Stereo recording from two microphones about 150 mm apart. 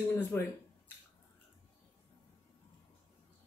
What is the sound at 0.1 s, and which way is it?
Speech, 15° left (ahead or behind).